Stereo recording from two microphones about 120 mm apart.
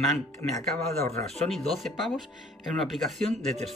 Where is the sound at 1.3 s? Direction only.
Centre (ahead or behind).